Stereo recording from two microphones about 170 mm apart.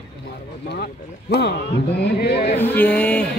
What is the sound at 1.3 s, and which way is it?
A man's voice, 80° left.